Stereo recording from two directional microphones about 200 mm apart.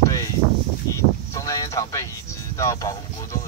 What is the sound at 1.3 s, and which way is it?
Boat, 15° left (ahead or behind).